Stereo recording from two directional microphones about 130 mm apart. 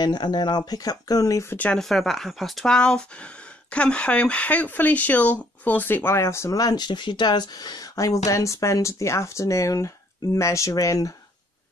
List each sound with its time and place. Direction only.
0.0 s speech: 30° left (ahead or behind)